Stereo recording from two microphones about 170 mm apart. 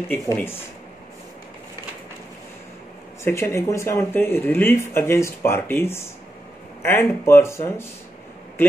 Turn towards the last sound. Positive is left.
turn(degrees=15)  # may be behind; listen again after turning